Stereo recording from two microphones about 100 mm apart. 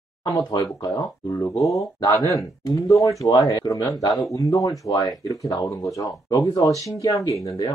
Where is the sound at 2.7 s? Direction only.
30° left (ahead or behind).